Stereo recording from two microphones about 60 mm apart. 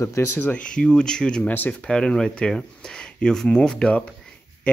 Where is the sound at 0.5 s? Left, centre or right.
Centre.